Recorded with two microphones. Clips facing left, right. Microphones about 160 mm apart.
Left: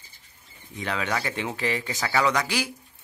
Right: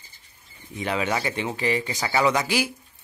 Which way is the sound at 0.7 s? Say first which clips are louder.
Right 3 dB; 10° right (ahead or behind).